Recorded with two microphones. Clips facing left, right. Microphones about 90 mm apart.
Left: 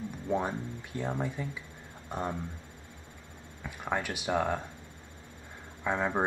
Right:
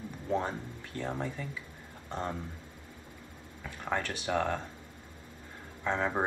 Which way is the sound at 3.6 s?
15° left (ahead or behind).